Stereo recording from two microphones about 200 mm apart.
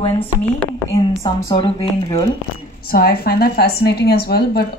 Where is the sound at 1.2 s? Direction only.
20° left (ahead or behind).